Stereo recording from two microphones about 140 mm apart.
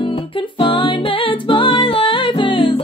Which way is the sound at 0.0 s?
40° left (ahead or behind).